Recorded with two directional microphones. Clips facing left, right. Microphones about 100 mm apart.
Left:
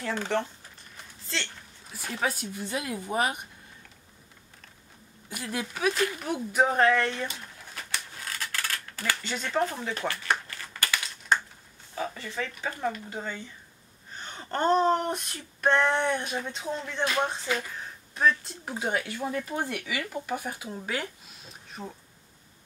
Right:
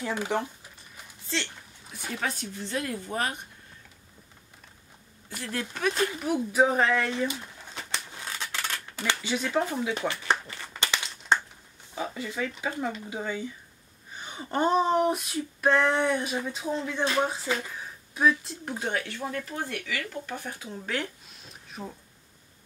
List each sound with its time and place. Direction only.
0.0 s speech: 10° right (ahead or behind); by 3.4 s 15° left (ahead or behind)
5.3 s speech: 15° left (ahead or behind)
6.1 s speech: centre (ahead or behind)
7.7 s a sound: 20° right (ahead or behind)
9.2 s speech: 5° right (ahead or behind)
9.9 s speech: 20° right (ahead or behind)
10.5 s a sound: 15° right (ahead or behind)
11.9 s speech: 10° right (ahead or behind)